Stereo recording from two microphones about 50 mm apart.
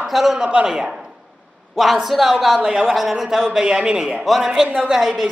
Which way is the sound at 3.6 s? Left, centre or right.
Centre.